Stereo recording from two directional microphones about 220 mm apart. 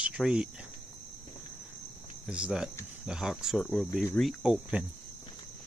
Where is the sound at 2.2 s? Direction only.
5° right (ahead or behind).